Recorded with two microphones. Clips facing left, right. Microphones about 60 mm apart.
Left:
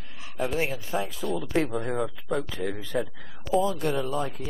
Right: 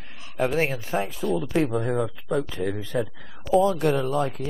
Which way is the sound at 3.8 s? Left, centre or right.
Right.